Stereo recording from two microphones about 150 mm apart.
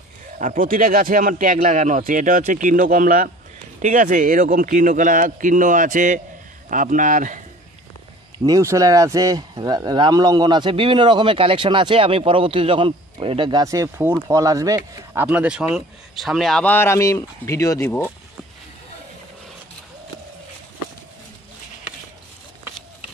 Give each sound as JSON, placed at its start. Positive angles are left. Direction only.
{"t": 0.4, "sound": "speech", "side_deg": -65}
{"t": 8.5, "sound": "speech", "side_deg": -20}
{"t": 15.2, "sound": "a man's voice", "side_deg": -10}